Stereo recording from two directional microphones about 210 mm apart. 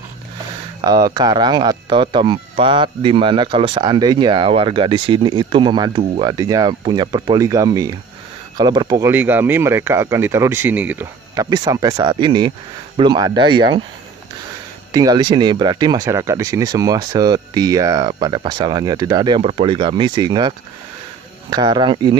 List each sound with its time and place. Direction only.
0.8 s speech: 20° right (ahead or behind)
14.9 s speech: 15° right (ahead or behind)